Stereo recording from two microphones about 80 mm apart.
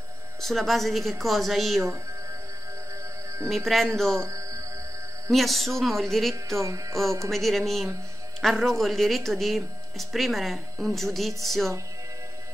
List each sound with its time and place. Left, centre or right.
0.4 s speech: centre
3.4 s speech: centre
4.2 s music: right
5.3 s speech: centre
6.3 s speech: right
7.2 s speech: centre